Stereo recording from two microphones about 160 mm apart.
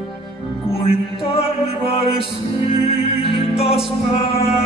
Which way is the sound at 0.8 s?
35° left (ahead or behind).